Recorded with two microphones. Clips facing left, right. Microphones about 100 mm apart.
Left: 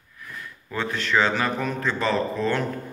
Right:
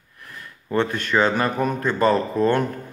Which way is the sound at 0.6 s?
50° right (ahead or behind).